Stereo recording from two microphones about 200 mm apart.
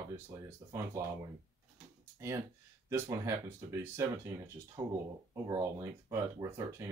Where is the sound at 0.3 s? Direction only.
15° right (ahead or behind).